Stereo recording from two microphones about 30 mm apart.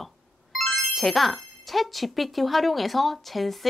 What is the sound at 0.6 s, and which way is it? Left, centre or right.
Speech, centre.